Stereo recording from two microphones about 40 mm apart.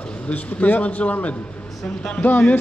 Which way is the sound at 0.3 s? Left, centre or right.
Left.